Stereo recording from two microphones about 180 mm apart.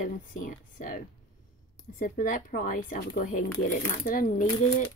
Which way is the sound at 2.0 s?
50° left (ahead or behind).